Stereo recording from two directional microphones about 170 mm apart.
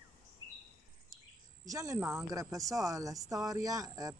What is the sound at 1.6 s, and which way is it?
Speech, 20° right (ahead or behind).